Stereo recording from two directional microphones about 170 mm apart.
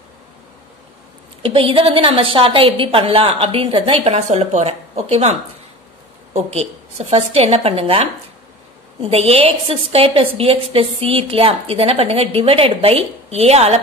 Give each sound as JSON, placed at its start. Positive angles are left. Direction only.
{"t": 1.4, "sound": "a woman's voice", "side_deg": -35}